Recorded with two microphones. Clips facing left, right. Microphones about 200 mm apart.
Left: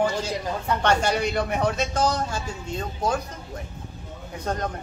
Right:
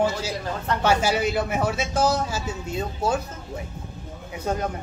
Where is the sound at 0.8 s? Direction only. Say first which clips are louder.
Right 2 dB; 5° right (ahead or behind).